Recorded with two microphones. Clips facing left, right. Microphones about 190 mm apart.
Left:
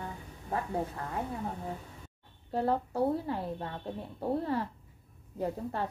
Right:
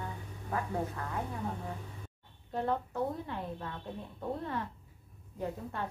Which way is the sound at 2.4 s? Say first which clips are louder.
Left 3 dB; 35° left (ahead or behind).